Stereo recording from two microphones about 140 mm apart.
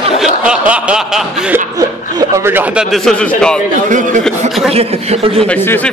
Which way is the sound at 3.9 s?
65° right (ahead or behind).